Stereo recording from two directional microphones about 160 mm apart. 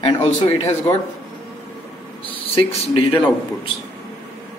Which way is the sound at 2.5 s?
35° left (ahead or behind).